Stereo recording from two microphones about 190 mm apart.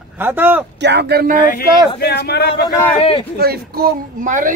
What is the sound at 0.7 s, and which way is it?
Speech, 65° right (ahead or behind).